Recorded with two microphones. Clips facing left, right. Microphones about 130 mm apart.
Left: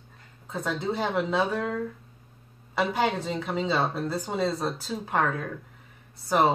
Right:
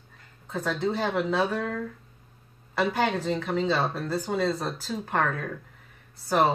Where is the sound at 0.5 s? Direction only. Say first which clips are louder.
Right 2 dB; 10° left (ahead or behind).